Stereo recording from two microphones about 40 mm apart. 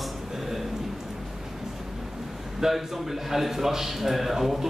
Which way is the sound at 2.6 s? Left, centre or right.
Centre.